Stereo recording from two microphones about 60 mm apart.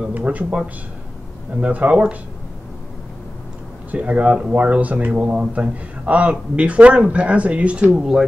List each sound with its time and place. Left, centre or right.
0.1 s speech: right
1.6 s speech: right
3.9 s speech: right